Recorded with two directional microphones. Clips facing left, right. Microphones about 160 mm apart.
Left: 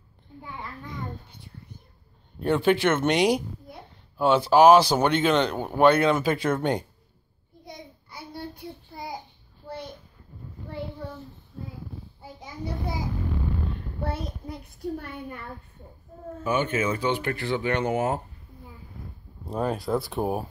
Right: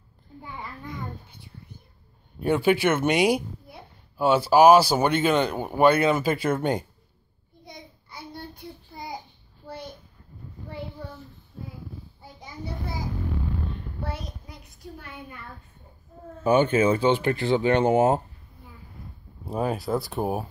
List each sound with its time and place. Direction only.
0.3 s a sound: centre (ahead or behind)
2.4 s a woman's voice: 10° right (ahead or behind)
7.6 s child singing: 5° left (ahead or behind)
16.4 s speech: 30° right (ahead or behind)
19.4 s speech: 5° right (ahead or behind)